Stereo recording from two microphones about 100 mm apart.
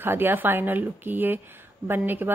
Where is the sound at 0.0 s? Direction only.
20° right (ahead or behind).